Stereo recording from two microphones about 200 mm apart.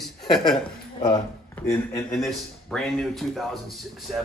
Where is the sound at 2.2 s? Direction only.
Centre (ahead or behind).